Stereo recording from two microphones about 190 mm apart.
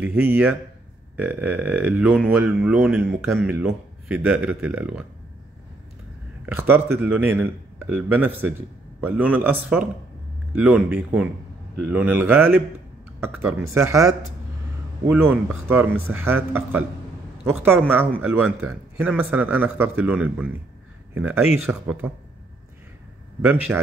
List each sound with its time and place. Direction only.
0.0 s speech: 10° right (ahead or behind)
3.0 s speech: 10° right (ahead or behind)
6.4 s speech: 10° right (ahead or behind)
23.4 s speech: 10° right (ahead or behind)